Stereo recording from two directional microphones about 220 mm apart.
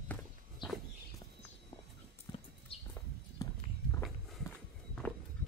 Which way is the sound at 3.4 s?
15° left (ahead or behind).